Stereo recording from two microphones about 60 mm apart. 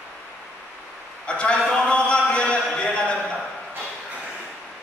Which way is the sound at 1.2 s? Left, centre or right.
Centre.